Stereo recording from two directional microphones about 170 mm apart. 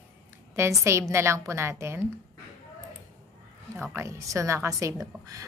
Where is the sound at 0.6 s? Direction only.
15° right (ahead or behind).